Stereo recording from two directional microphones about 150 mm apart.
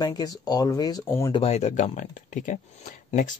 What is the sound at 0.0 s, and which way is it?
Speech, 25° left (ahead or behind).